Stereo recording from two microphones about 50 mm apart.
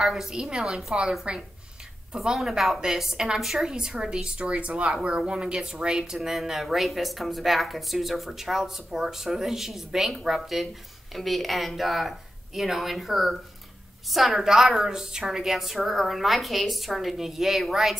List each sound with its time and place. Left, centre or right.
0.0 s a woman's voice: centre
2.1 s a woman's voice: centre